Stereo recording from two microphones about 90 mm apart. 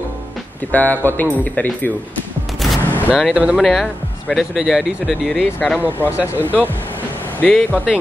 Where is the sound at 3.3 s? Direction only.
15° right (ahead or behind).